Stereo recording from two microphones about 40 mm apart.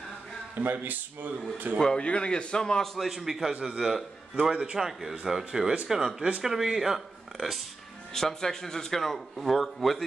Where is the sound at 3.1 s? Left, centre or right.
Centre.